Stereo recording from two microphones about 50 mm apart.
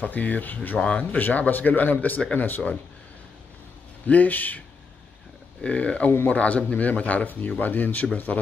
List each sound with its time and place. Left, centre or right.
0.0 s speech: left
4.1 s speech: left
5.6 s speech: left